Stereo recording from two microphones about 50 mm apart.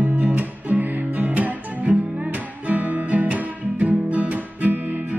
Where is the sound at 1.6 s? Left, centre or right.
Right.